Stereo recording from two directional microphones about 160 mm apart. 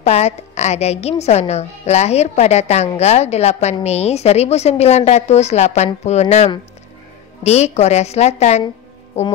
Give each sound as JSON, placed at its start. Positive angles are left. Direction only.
{"t": 0.0, "sound": "a woman's voice", "side_deg": 40}